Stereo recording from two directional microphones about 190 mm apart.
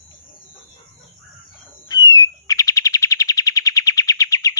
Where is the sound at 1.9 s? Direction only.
20° left (ahead or behind).